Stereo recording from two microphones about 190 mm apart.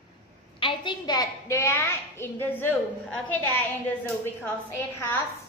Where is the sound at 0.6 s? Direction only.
25° left (ahead or behind); by 3.6 s 10° left (ahead or behind).